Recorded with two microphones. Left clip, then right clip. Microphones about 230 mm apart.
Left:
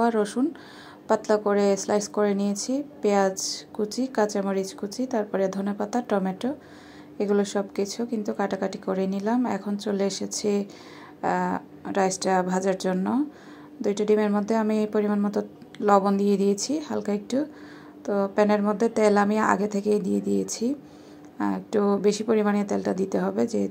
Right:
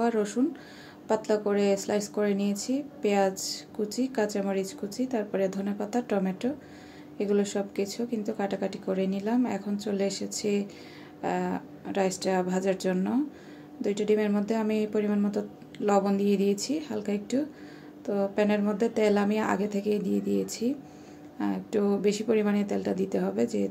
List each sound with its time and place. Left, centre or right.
0.0 s speech: centre